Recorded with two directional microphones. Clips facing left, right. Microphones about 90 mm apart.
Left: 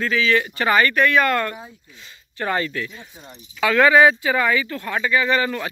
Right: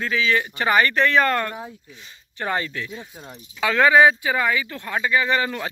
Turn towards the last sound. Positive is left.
turn(degrees=-20)  # may be behind; listen again after turning